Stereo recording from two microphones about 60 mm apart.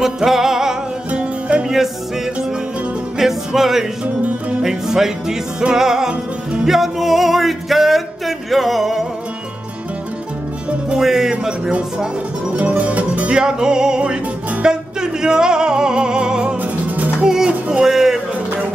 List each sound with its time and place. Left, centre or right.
0.0 s music: centre
3.2 s music: centre
4.0 s music: right
4.6 s music: centre
11.0 s music: centre
12.5 s music: right
13.4 s music: centre